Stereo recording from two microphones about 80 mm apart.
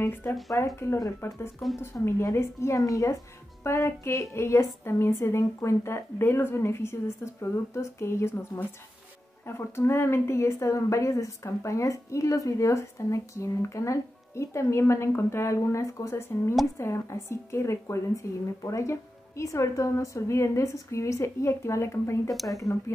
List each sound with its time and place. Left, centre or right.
0.0 s speech: left
0.5 s a woman's voice: left
9.5 s a woman's voice: left
22.3 s speech: centre
22.6 s a woman's voice: left